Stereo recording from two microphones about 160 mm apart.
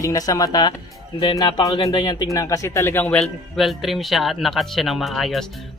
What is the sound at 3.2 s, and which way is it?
Speech, centre (ahead or behind).